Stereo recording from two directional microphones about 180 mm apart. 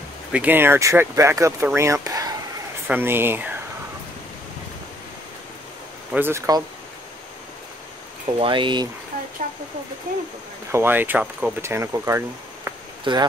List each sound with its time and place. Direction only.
0.3 s speech: 10° right (ahead or behind)
6.1 s speech: 15° right (ahead or behind)
8.4 s speech: 25° right (ahead or behind)
9.1 s a sound: 50° right (ahead or behind)
10.7 s speech: 10° right (ahead or behind)
13.1 s speech: 25° right (ahead or behind)